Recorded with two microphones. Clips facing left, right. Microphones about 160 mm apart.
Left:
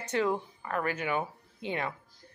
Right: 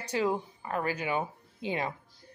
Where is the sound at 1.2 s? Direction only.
20° right (ahead or behind).